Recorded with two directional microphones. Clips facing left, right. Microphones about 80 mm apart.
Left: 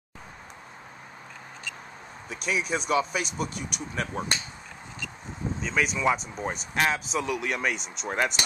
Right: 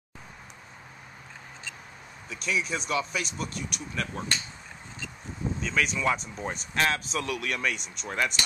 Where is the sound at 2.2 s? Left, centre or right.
Left.